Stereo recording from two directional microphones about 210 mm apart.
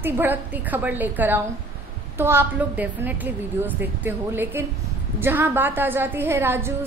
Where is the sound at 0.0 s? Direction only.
10° right (ahead or behind).